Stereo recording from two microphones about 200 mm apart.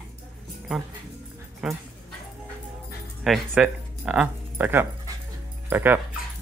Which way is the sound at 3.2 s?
5° right (ahead or behind).